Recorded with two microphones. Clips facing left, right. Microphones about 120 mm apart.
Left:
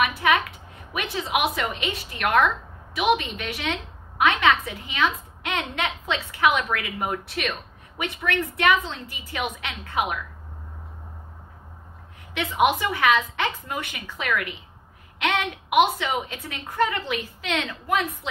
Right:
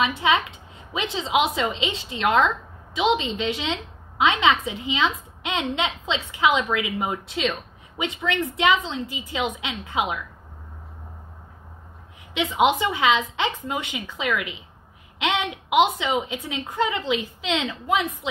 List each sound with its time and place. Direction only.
0.0 s a woman's voice: 25° right (ahead or behind)
12.4 s a woman's voice: 20° right (ahead or behind)